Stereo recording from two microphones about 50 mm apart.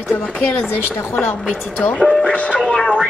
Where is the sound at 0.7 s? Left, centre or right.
Left.